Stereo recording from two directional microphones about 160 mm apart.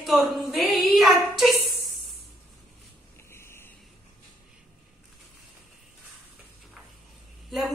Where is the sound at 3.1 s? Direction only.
15° left (ahead or behind).